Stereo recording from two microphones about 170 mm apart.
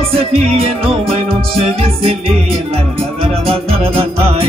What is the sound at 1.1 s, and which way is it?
Music, 35° right (ahead or behind).